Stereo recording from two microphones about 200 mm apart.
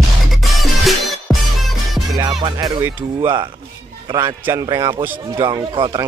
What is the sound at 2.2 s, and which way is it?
Music, 20° right (ahead or behind).